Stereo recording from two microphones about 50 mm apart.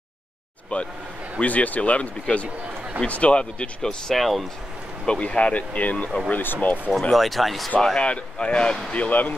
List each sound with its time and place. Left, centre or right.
0.7 s speech: left
4.1 s speech: centre
5.0 s speech: centre; by 6.8 s left
6.9 s speech: centre
8.0 s speech: left